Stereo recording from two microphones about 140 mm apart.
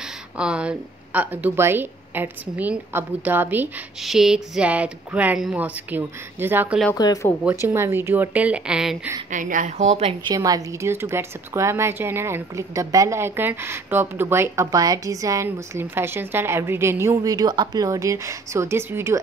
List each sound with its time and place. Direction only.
0.4 s a woman's voice: 5° right (ahead or behind)
4.0 s a woman's voice: centre (ahead or behind)
7.0 s speech: 30° left (ahead or behind)
7.6 s a woman's voice: 15° right (ahead or behind)
9.3 s a woman's voice: 65° right (ahead or behind); by 10.1 s 50° right (ahead or behind)
10.2 s speech: 25° right (ahead or behind)